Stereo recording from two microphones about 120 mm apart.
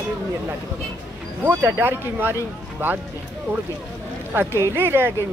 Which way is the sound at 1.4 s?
20° right (ahead or behind).